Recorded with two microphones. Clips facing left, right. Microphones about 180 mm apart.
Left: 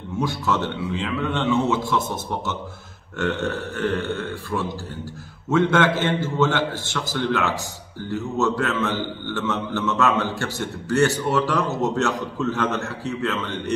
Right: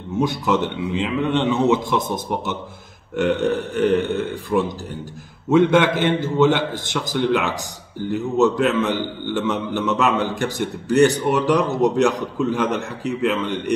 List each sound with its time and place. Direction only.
0.2 s a man's voice: 15° right (ahead or behind)